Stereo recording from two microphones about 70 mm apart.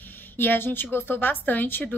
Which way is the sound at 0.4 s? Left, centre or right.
Left.